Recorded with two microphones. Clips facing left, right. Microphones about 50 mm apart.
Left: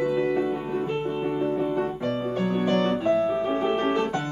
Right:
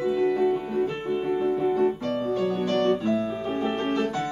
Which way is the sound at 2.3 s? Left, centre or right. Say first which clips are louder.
Even; left.